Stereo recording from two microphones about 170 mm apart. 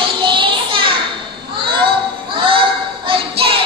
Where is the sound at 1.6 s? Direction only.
30° right (ahead or behind).